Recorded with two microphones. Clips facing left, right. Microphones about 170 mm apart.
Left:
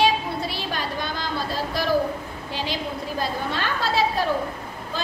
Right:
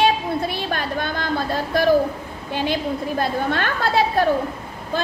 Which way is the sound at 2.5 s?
55° right (ahead or behind).